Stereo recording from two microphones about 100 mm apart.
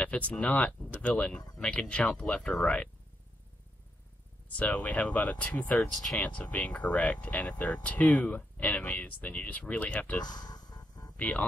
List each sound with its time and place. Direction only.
0.0 s speech: 10° left (ahead or behind)
4.6 s speech: 15° left (ahead or behind)
5.8 s speech: centre (ahead or behind)
6.2 s speech: 15° left (ahead or behind)
10.2 s a sound: 45° left (ahead or behind)
11.1 s speech: 15° left (ahead or behind)